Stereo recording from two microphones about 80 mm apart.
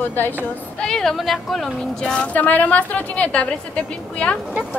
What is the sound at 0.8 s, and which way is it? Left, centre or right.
A woman's voice, centre.